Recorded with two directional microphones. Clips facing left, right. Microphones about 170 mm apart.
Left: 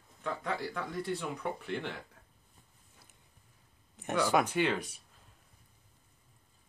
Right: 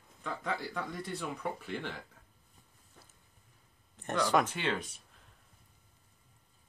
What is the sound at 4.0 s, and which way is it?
Speech, 10° left (ahead or behind).